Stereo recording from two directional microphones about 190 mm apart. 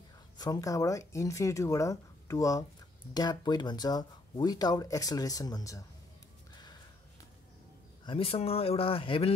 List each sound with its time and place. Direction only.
0.4 s speech: 20° left (ahead or behind)
8.0 s speech: 30° left (ahead or behind)